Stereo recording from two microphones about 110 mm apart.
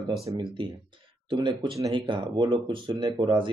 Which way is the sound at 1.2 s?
50° right (ahead or behind).